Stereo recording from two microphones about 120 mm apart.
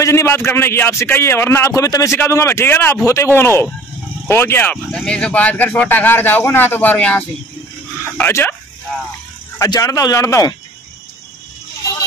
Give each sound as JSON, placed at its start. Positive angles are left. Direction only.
{"t": 0.0, "sound": "a man's voice", "side_deg": 20}
{"t": 9.6, "sound": "a man's voice", "side_deg": 30}